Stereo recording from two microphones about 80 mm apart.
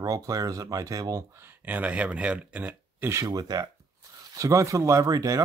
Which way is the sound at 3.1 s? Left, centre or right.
Right.